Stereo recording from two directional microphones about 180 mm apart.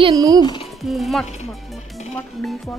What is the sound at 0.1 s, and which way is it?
Speech, 20° right (ahead or behind).